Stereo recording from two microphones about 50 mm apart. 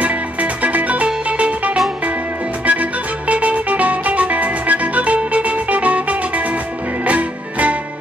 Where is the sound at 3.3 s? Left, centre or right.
Right.